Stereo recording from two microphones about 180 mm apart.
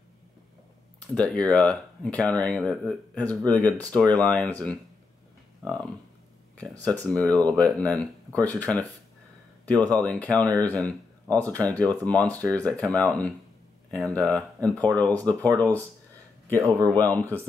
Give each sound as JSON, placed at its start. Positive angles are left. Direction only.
{"t": 1.1, "sound": "speech", "side_deg": 5}
{"t": 9.8, "sound": "speech", "side_deg": 10}
{"t": 16.5, "sound": "speech", "side_deg": -20}